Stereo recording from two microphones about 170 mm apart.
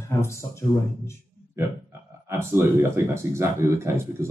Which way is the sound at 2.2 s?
15° right (ahead or behind).